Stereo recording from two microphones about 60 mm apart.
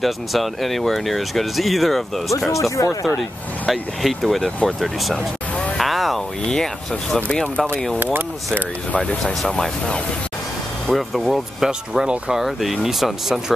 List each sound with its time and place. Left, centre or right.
0.0 s speech: centre
2.8 s speech: left
3.2 s speech: centre
5.8 s a sound: centre
6.4 s speech: centre
8.0 s speech: right
8.9 s speech: centre
9.2 s speech: centre